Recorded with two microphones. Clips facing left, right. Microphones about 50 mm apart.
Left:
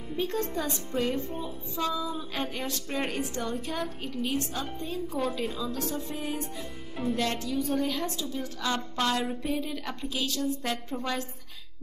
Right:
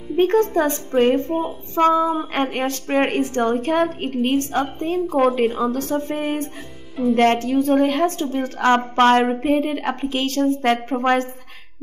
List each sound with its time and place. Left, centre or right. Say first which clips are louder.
0.2 s speech: right 14 dB; right